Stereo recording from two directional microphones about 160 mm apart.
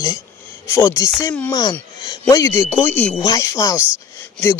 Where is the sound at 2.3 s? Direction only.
20° left (ahead or behind).